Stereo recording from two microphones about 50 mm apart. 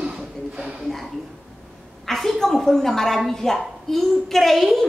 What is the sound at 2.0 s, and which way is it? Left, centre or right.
A woman's voice, centre.